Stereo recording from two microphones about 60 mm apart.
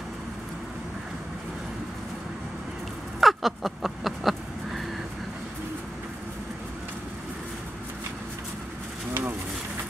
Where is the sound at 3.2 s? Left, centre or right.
Centre.